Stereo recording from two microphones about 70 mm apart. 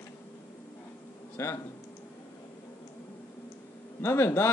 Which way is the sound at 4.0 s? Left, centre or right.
Left.